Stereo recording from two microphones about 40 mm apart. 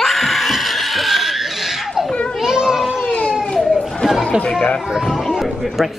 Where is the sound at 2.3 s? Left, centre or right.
Centre.